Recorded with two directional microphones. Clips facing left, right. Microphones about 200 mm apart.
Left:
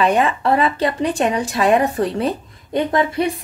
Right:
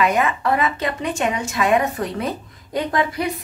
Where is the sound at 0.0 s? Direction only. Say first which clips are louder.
Left 3 dB; 30° left (ahead or behind).